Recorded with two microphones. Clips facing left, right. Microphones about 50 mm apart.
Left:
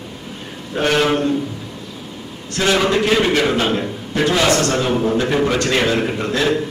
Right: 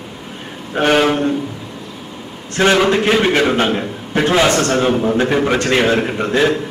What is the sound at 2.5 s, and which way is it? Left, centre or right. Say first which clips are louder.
A man's voice: right 3 dB; right.